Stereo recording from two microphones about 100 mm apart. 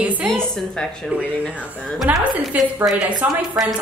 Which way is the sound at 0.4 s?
5° left (ahead or behind).